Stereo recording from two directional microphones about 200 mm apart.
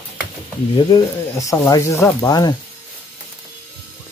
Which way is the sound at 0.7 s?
20° left (ahead or behind).